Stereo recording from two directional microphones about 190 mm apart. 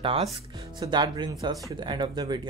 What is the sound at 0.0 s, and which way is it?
Speech, 30° right (ahead or behind).